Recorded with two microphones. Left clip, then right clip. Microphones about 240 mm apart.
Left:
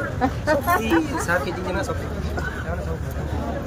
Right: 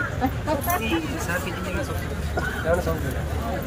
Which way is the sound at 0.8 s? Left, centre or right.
Centre.